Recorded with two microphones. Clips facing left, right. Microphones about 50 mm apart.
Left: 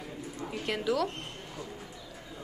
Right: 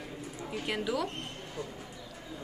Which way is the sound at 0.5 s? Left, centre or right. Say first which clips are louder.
Left 2 dB; centre.